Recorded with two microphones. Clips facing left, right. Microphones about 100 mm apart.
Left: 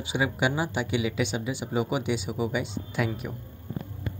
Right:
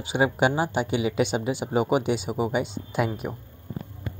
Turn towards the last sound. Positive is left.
turn(degrees=-40)  # may be behind; listen again after turning